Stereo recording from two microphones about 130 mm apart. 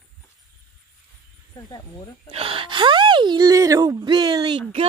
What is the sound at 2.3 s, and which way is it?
Speech, 45° right (ahead or behind).